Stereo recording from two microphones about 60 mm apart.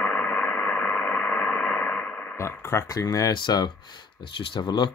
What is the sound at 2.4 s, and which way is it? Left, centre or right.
Speech, left.